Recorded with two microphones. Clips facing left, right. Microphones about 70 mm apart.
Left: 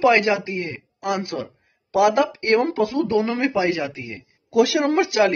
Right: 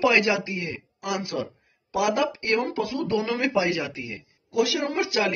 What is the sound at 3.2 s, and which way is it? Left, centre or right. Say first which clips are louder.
Speech: left 3 dB; left.